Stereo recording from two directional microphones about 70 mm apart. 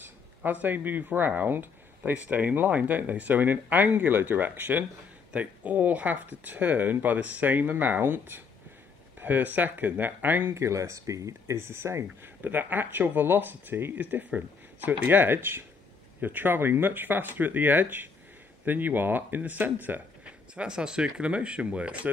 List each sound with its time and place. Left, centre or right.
0.0 s speech: right
10.5 s speech: right
12.4 s speech: right
20.5 s speech: centre